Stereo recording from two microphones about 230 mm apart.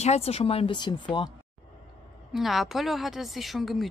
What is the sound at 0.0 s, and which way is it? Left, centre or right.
Speech, left.